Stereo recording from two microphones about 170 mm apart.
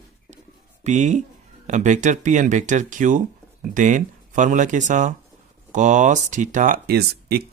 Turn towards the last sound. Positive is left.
turn(degrees=-65)  # may be behind; listen again after turning